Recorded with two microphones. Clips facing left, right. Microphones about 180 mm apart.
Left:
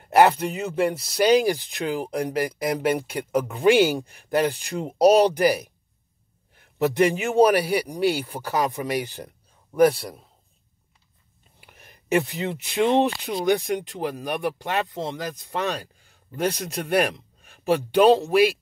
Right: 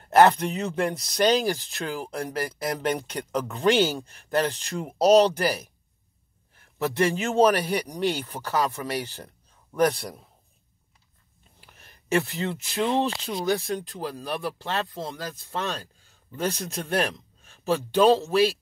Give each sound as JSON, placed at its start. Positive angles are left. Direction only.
{"t": 0.0, "sound": "speech", "side_deg": 10}
{"t": 11.6, "sound": "a sound", "side_deg": 15}
{"t": 12.6, "sound": "speech", "side_deg": 20}